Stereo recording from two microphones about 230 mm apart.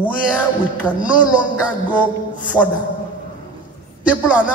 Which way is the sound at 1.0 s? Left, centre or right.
Centre.